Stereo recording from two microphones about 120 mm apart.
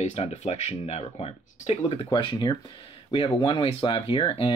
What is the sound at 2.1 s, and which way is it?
Speech, 40° left (ahead or behind).